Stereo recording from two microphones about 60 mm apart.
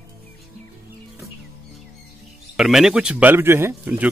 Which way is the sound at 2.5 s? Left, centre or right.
Centre.